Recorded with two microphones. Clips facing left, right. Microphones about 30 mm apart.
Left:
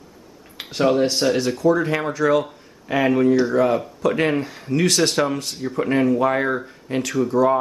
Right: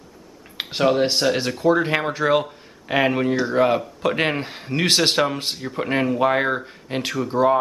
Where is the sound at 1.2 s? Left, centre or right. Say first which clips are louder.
Left 1 dB; right.